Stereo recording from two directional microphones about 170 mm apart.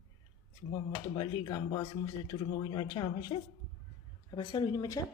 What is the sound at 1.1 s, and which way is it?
A man's voice, 25° left (ahead or behind).